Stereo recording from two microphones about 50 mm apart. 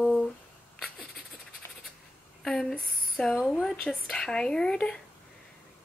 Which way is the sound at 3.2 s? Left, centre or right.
Centre.